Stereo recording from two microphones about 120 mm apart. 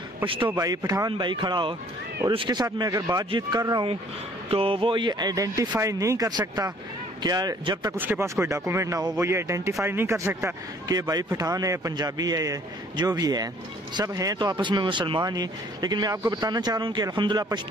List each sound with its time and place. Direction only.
0.2 s a man's voice: 45° right (ahead or behind)
0.6 s speech: 30° right (ahead or behind)
2.6 s speech: 30° right (ahead or behind)
3.3 s speech: 40° right (ahead or behind)
4.5 s speech: 50° right (ahead or behind)
7.9 s speech: 20° right (ahead or behind); by 17.6 s 35° right (ahead or behind)